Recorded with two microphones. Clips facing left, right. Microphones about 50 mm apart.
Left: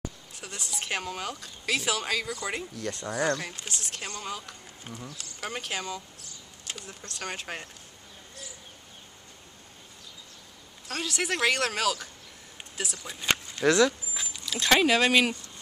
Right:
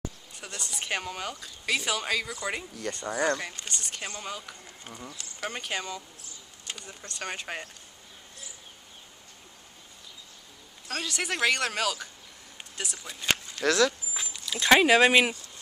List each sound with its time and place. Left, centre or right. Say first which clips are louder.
0.3 s speech: even; centre
10.9 s speech: left 1 dB; centre
14.1 s speech: even; centre